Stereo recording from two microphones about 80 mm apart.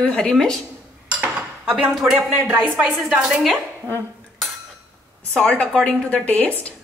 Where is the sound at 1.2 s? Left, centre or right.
Centre.